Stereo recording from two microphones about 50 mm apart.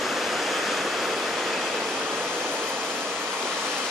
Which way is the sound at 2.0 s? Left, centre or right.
Right.